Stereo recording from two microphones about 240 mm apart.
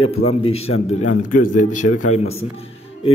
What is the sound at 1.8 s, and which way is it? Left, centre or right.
Speech, left.